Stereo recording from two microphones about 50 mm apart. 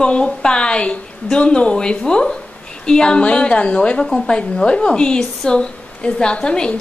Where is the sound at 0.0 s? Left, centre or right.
Centre.